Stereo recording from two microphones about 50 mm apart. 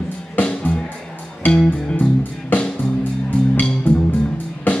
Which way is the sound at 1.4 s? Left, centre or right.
Left.